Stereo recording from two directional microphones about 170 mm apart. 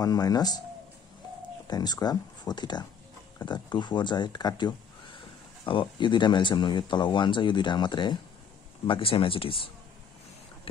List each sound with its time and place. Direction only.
0.0 s speech: 20° left (ahead or behind)
1.7 s speech: 25° left (ahead or behind)